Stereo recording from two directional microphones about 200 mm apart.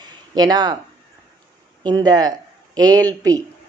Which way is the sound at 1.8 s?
20° right (ahead or behind).